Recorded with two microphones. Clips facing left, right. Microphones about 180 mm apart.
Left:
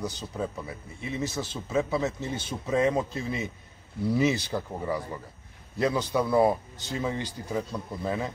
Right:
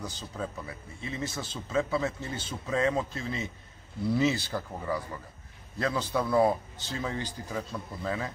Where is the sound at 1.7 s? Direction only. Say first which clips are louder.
Left 1 dB; 15° left (ahead or behind).